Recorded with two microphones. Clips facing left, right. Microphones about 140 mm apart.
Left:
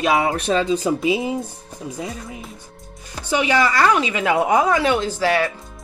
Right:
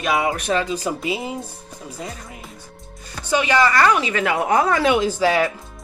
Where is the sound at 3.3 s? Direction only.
15° left (ahead or behind).